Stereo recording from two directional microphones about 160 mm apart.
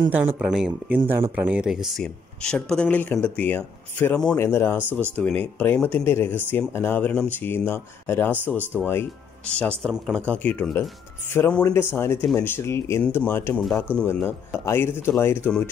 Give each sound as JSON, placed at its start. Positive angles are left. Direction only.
{"t": 0.1, "sound": "speech", "side_deg": -10}
{"t": 9.8, "sound": "speech", "side_deg": 5}
{"t": 13.6, "sound": "speech", "side_deg": 0}
{"t": 13.8, "sound": "speech", "side_deg": 15}